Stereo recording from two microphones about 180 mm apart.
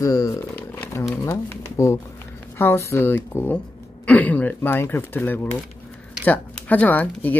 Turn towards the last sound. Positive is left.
turn(degrees=10)  # may be behind; listen again after turning